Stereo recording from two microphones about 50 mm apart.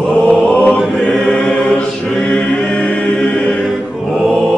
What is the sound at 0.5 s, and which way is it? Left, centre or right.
Mantra, left.